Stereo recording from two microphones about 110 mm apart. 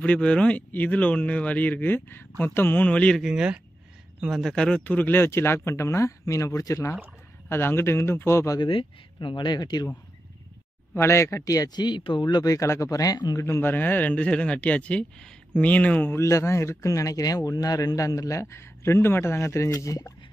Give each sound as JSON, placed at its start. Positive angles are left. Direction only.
{"t": 0.0, "sound": "speech", "side_deg": 10}
{"t": 3.2, "sound": "speech", "side_deg": -5}
{"t": 8.5, "sound": "speech", "side_deg": 50}
{"t": 11.0, "sound": "speech", "side_deg": 25}
{"t": 12.5, "sound": "speech", "side_deg": 25}
{"t": 13.5, "sound": "speech", "side_deg": 20}
{"t": 16.2, "sound": "speech", "side_deg": 25}